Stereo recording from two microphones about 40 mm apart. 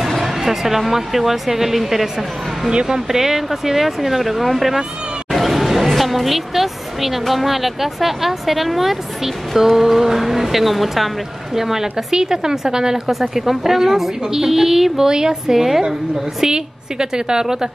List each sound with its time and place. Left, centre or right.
0.0 s speech: centre
2.7 s speech: right
3.1 s a woman's voice: centre